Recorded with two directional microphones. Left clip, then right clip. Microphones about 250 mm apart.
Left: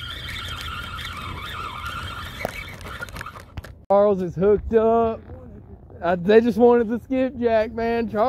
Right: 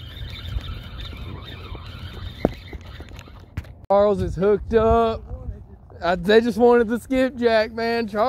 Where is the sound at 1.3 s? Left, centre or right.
Left.